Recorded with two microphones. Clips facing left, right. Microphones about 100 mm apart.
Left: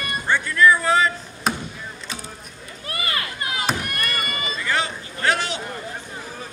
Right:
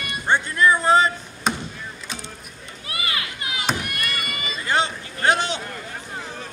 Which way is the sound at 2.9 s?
40° left (ahead or behind).